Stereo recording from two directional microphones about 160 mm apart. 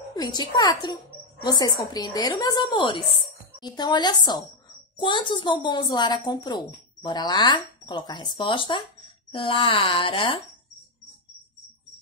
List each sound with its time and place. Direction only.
0.1 s a woman's voice: 25° left (ahead or behind)